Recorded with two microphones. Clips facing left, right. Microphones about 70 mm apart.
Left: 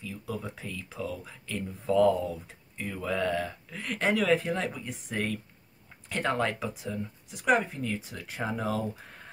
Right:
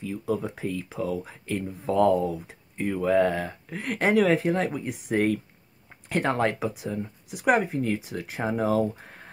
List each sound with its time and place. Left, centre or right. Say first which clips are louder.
0.0 s speech: right 8 dB; right
6.6 s speech: right 5 dB; centre
7.4 s speech: right 3 dB; right
8.3 s speech: right 6 dB; right